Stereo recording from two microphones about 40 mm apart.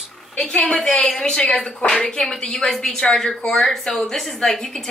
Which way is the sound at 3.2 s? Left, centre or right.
Centre.